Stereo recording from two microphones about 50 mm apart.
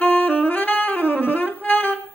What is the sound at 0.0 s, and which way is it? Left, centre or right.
Saxophone, left.